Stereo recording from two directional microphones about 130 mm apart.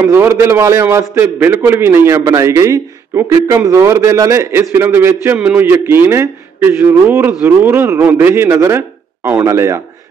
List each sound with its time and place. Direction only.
0.0 s a man's voice: 20° right (ahead or behind)